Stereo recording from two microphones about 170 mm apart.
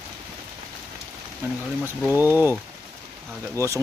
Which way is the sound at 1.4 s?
10° right (ahead or behind).